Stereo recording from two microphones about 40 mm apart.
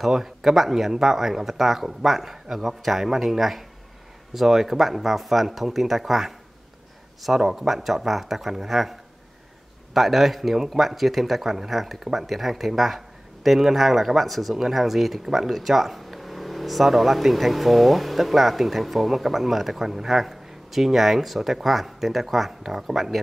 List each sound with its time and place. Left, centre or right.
0.0 s speech: centre
9.9 s speech: centre